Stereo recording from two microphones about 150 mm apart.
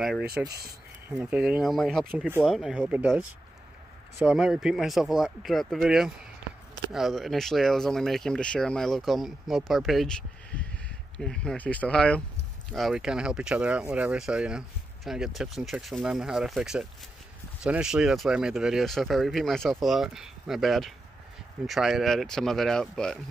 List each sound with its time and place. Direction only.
0.2 s speech: 90° right
1.0 s speech: 10° right (ahead or behind)
2.1 s speech: 15° right (ahead or behind)
2.4 s speech: centre (ahead or behind)